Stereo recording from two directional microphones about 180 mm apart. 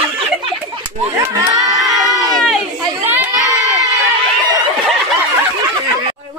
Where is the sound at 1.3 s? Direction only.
20° right (ahead or behind).